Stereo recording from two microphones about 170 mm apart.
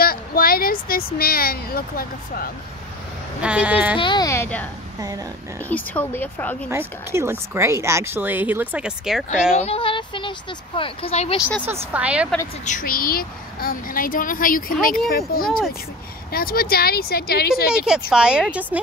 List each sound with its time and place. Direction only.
0.0 s speech: 60° left (ahead or behind)
3.4 s speech: 5° right (ahead or behind)
3.9 s speech: 25° left (ahead or behind); by 4.6 s 10° left (ahead or behind)
5.7 s a woman's voice: 10° left (ahead or behind)
6.7 s speech: 15° right (ahead or behind)
9.6 s a sound: 35° left (ahead or behind)
10.8 s speech: 35° left (ahead or behind)
11.6 s speech: 15° right (ahead or behind)
12.6 s a woman's voice: 55° left (ahead or behind)
17.6 s speech: 5° right (ahead or behind)